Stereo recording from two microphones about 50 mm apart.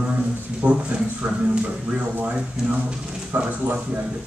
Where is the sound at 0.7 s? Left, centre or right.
Right.